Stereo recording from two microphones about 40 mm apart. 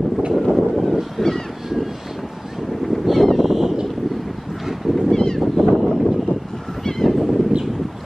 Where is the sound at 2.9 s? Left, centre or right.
Centre.